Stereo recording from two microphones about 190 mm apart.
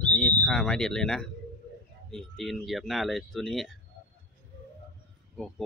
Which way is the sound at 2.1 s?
5° left (ahead or behind).